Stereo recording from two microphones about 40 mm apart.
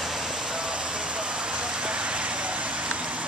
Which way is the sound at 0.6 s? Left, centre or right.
Right.